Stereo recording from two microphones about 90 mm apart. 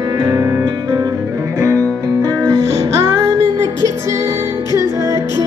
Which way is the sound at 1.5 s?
35° right (ahead or behind).